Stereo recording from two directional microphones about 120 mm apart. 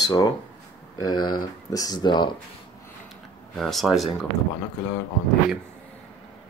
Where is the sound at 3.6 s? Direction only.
Centre (ahead or behind).